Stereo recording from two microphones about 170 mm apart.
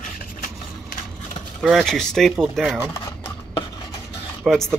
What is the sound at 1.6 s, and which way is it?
Speech, centre (ahead or behind).